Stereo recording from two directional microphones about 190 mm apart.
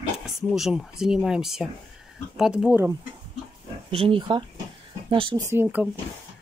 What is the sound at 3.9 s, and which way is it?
Speech, 30° right (ahead or behind).